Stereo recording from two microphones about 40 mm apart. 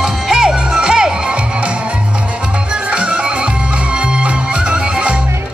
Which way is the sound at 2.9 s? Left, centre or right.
Right.